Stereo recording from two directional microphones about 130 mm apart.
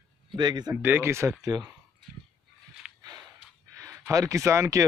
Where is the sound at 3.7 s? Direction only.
25° right (ahead or behind).